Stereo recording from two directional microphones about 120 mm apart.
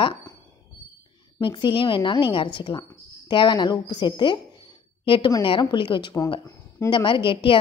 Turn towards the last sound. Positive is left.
turn(degrees=45)  # may be behind; listen again after turning